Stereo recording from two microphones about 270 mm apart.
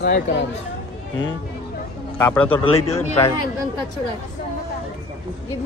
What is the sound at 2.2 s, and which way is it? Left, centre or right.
Speech, centre.